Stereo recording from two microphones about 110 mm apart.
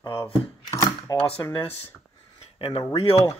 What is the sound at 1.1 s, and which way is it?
Speech, 55° left (ahead or behind).